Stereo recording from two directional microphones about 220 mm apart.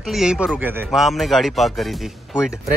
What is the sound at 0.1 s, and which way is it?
A man's voice, 5° right (ahead or behind).